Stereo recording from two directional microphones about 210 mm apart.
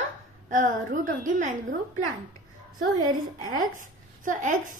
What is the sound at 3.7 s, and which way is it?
A child's voice, 40° right (ahead or behind).